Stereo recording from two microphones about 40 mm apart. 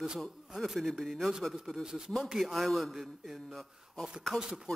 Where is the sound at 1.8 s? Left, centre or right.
Centre.